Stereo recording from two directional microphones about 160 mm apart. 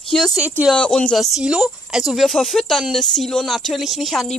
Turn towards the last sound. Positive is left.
turn(degrees=0)  # may be behind; listen again after turning